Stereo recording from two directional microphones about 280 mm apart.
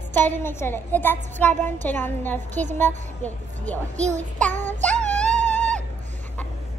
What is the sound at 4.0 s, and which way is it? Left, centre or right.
Child singing, right.